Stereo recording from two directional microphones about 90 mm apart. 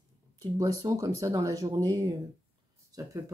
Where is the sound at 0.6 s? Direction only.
40° right (ahead or behind).